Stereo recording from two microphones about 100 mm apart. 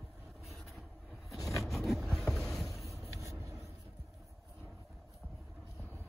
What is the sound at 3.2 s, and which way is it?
Vehicle, 30° right (ahead or behind).